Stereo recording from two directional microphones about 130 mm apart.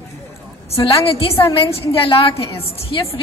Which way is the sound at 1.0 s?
45° left (ahead or behind).